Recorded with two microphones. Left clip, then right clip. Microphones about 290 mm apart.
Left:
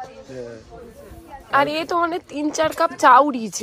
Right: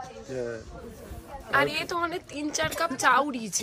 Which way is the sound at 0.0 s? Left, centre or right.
Centre.